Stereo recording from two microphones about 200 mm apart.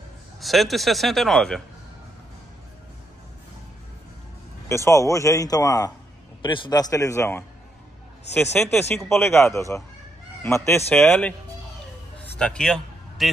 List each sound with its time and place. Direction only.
0.4 s speech: centre (ahead or behind)
4.6 s a man's voice: 15° left (ahead or behind)
12.4 s a man's voice: 5° left (ahead or behind)